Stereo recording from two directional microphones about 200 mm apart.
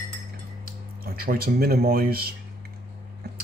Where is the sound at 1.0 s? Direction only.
45° right (ahead or behind).